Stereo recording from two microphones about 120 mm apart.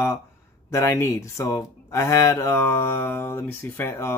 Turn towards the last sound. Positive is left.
turn(degrees=20)  # may be behind; listen again after turning